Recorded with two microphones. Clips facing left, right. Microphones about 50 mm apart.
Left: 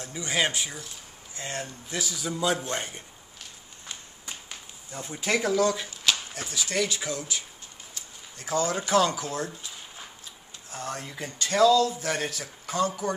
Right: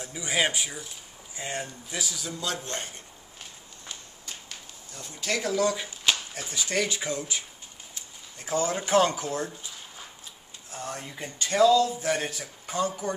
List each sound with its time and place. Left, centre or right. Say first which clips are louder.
0.0 s speech: even; centre
2.2 s a man's voice: left 6 dB; centre
3.9 s a sound: left 2 dB; left
5.4 s speech: even; centre
6.1 s a sound: even; centre
6.5 s speech: even; centre
8.5 s speech: even; right
11.0 s speech: left 1 dB; centre